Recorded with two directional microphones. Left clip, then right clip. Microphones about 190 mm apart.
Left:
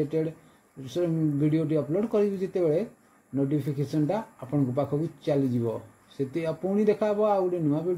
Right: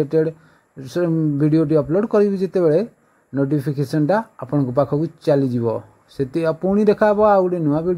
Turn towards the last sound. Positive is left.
turn(degrees=-25)  # may be behind; listen again after turning